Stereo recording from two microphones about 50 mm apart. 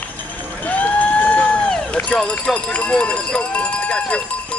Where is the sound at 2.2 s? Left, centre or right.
Left.